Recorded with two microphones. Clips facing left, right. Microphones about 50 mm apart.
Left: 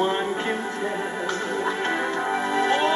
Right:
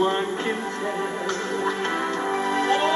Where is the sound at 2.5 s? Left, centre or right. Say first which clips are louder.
Left 1 dB; centre.